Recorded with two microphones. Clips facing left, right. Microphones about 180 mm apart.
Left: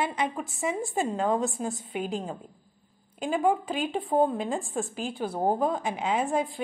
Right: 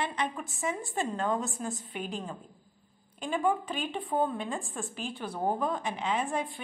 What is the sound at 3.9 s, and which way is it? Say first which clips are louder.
A woman's voice: left 6 dB; 35° left (ahead or behind).